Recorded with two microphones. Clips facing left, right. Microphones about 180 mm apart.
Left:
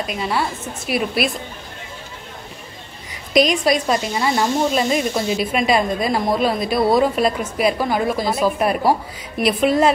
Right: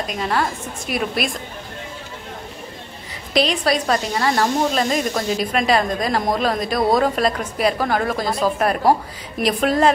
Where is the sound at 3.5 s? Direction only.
10° left (ahead or behind).